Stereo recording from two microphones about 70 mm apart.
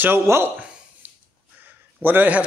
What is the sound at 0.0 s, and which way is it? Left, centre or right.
Speech, right.